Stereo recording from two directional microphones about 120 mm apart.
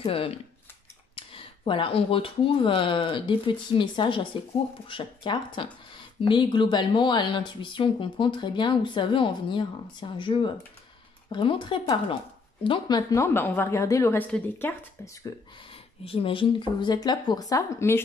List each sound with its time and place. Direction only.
0.0 s a woman's voice: 50° left (ahead or behind); by 14.8 s 15° left (ahead or behind)
15.3 s speech: 30° left (ahead or behind)
16.0 s speech: 50° left (ahead or behind); by 18.0 s 20° left (ahead or behind)